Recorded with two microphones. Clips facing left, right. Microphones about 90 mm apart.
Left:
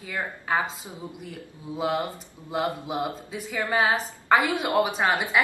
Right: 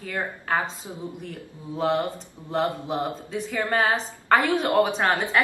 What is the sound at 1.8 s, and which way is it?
A woman's voice, 10° left (ahead or behind).